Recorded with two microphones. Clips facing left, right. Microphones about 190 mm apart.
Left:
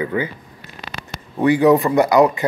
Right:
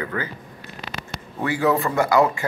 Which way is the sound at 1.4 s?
20° left (ahead or behind).